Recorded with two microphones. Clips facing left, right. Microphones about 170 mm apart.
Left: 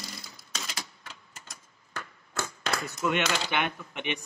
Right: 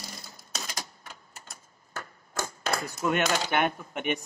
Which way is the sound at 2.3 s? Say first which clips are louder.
Right 2 dB; 10° right (ahead or behind).